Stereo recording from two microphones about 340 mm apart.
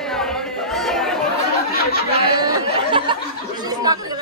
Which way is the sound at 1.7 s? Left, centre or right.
Left.